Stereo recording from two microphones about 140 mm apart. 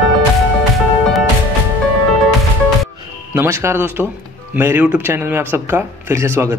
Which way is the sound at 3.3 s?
20° right (ahead or behind).